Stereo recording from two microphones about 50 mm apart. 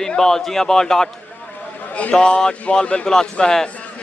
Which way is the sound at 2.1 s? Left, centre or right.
Centre.